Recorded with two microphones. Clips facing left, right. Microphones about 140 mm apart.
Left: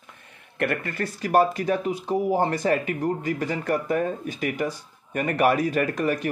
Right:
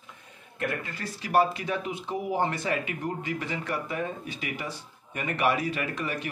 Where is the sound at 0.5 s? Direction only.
65° left (ahead or behind).